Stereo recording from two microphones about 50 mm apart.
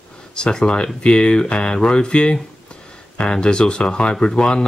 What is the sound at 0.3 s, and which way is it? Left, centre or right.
Speech, centre.